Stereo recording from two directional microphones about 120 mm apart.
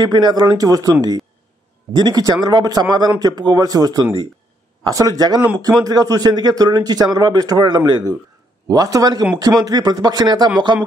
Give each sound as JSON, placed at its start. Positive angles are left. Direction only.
{"t": 0.0, "sound": "speech", "side_deg": -35}
{"t": 2.0, "sound": "speech", "side_deg": -35}